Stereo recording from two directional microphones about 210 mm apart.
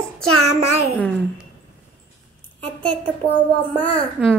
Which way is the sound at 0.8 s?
5° left (ahead or behind).